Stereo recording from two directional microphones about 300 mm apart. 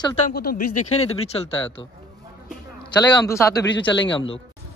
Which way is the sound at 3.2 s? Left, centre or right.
Centre.